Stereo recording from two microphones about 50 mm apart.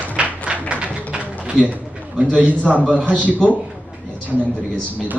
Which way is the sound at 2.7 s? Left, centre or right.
Centre.